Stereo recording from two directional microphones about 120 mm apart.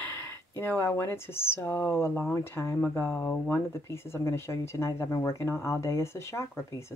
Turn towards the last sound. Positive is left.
turn(degrees=25)  # may be behind; listen again after turning